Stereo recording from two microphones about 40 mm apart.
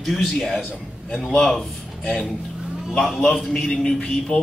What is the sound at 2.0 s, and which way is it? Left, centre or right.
Speech, left.